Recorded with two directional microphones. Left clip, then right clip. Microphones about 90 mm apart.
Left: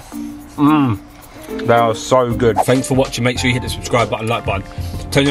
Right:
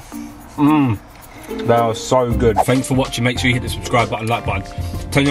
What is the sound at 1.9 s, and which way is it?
Speech, 20° left (ahead or behind).